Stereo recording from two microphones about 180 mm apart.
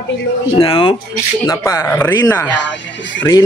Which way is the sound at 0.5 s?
30° left (ahead or behind).